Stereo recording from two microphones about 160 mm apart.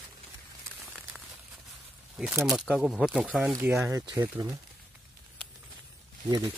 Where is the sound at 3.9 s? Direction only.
25° right (ahead or behind).